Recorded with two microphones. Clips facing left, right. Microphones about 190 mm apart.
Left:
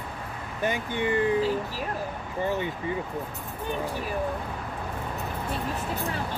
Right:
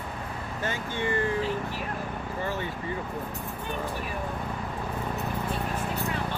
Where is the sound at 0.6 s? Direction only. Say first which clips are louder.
Left 4 dB; 15° left (ahead or behind).